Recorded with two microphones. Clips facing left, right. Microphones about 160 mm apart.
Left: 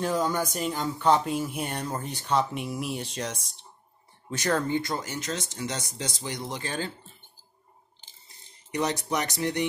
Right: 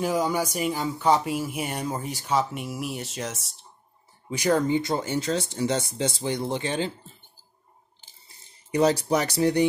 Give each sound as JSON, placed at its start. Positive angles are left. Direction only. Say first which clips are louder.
{"t": 0.0, "sound": "speech", "louder": "right 2 dB", "side_deg": -10}
{"t": 8.7, "sound": "speech", "louder": "right 6 dB", "side_deg": -30}